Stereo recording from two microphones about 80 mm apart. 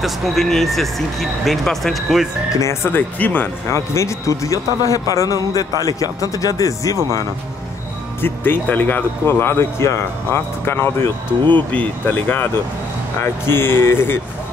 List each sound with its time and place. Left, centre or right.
0.0 s speech: centre
2.5 s a man's voice: left
3.2 s speech: left
3.6 s a man's voice: left
8.2 s speech: left
11.5 s speech: centre